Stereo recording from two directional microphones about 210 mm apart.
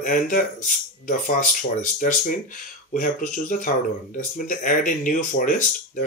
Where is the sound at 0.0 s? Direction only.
40° left (ahead or behind).